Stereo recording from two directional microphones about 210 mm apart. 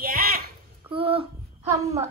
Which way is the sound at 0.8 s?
25° right (ahead or behind).